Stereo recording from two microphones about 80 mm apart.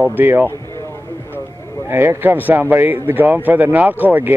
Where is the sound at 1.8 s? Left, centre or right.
Right.